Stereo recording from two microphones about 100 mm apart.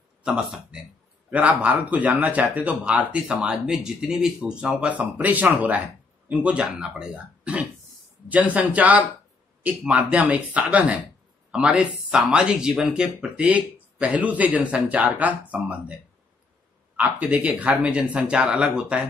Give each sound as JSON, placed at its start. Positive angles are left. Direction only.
{"t": 0.2, "sound": "speech", "side_deg": -10}